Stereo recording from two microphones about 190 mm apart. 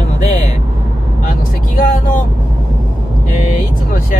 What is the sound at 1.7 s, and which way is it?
Vehicle, 45° left (ahead or behind).